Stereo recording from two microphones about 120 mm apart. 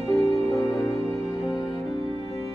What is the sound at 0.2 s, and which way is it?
Music, 25° left (ahead or behind).